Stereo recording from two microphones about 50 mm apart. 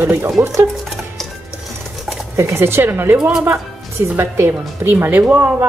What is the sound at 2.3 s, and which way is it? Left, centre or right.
Speech, right.